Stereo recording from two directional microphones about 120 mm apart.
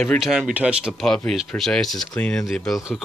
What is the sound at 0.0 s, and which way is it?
Speech, centre (ahead or behind).